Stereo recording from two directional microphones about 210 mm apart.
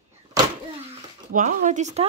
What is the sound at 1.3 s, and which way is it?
Speech, 35° right (ahead or behind).